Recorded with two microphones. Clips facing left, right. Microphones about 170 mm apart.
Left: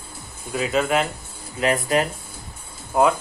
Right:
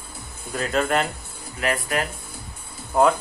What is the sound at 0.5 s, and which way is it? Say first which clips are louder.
Speech: left 1 dB; centre (ahead or behind).